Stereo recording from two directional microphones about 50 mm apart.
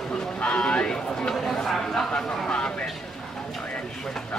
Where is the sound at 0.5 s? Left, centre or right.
Centre.